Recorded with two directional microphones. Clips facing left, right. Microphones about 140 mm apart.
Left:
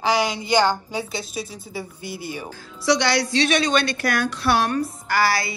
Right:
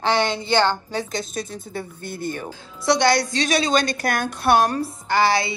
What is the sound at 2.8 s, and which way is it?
A woman's voice, 50° right (ahead or behind).